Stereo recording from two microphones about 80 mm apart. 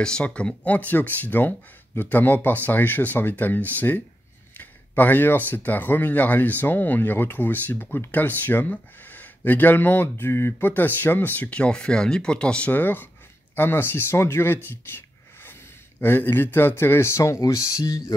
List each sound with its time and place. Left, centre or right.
0.0 s speech: centre
16.0 s speech: left